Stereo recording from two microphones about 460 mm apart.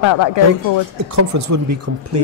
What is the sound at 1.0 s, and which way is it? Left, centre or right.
Speech, right.